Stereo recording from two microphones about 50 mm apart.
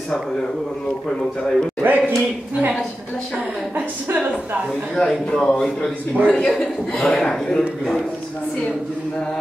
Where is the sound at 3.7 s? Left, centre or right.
Right.